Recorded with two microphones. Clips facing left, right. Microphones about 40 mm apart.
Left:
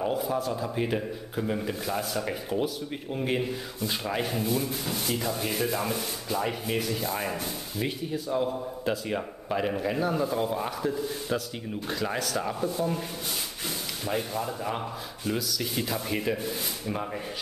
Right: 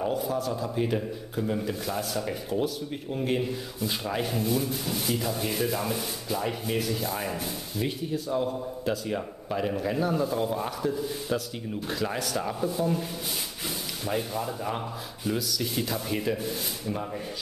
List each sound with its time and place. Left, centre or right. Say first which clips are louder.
0.0 s a man's voice: even; centre
14.0 s a man's voice: even; centre